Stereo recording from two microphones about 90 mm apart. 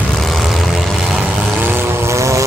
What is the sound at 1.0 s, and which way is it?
Vehicle, 10° right (ahead or behind).